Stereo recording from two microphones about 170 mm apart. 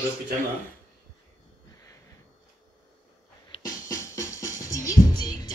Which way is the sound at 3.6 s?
20° left (ahead or behind).